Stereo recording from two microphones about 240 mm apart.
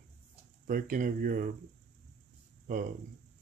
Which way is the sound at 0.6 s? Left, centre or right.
Right.